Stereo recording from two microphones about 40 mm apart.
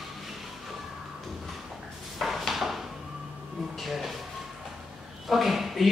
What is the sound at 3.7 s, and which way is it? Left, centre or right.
Music, centre.